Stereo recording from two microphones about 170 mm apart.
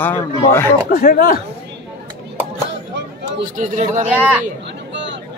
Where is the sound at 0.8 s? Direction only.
60° left (ahead or behind).